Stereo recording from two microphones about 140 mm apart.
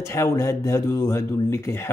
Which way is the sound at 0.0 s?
20° left (ahead or behind).